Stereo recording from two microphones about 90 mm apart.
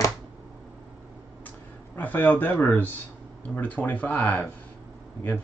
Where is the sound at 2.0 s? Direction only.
20° left (ahead or behind).